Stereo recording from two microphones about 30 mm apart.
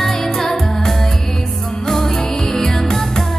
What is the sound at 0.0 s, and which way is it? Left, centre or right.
Music, centre.